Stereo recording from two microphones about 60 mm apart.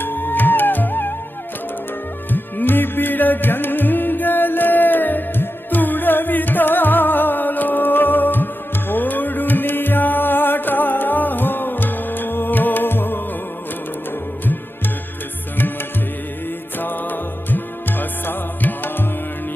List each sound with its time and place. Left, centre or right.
0.0 s music: left
2.3 s music: left
16.7 s music: left